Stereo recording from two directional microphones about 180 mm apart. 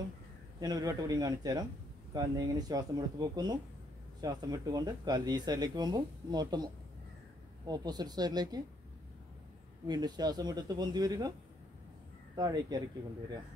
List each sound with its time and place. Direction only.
0.6 s speech: 20° right (ahead or behind)
9.8 s speech: 20° right (ahead or behind)
12.4 s speech: 20° right (ahead or behind)